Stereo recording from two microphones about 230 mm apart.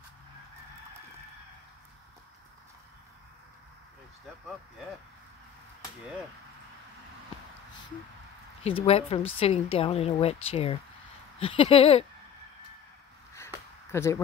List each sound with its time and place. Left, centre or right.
8.6 s speech: left
13.8 s speech: centre